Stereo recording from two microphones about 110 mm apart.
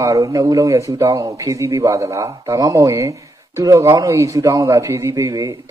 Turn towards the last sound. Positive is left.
turn(degrees=-30)  # may be behind; listen again after turning